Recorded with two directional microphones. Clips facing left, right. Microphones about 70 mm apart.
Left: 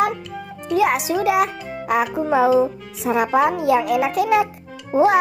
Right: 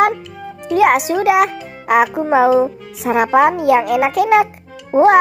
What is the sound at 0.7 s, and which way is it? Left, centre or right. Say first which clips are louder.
A child's voice: right 5 dB; right.